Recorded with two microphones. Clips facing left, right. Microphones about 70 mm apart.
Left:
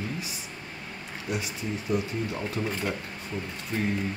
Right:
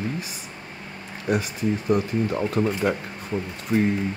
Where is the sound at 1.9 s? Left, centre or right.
Right.